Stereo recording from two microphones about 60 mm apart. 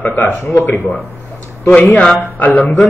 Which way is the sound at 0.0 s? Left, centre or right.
Left.